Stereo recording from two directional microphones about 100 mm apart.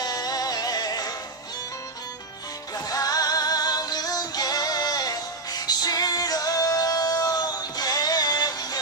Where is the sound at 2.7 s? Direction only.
40° left (ahead or behind).